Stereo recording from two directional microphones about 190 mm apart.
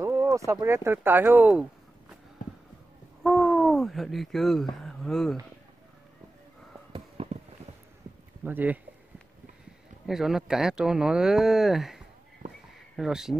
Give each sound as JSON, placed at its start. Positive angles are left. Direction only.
{"t": 0.0, "sound": "a sound", "side_deg": -10}
{"t": 0.5, "sound": "speech", "side_deg": -15}
{"t": 3.3, "sound": "hoot", "side_deg": 0}
{"t": 4.8, "sound": "speech", "side_deg": 0}
{"t": 7.2, "sound": "a sound", "side_deg": -30}
{"t": 8.5, "sound": "speech", "side_deg": -10}
{"t": 10.0, "sound": "speech", "side_deg": 0}